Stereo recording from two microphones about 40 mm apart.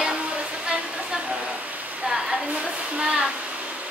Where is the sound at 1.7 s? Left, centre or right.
Right.